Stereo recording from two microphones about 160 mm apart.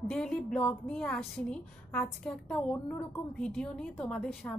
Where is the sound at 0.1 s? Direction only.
5° left (ahead or behind).